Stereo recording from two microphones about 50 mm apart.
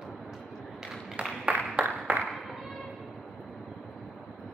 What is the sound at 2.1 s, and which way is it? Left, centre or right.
Clapping, right.